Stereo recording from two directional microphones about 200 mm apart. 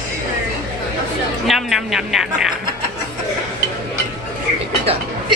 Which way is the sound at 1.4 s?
Centre (ahead or behind).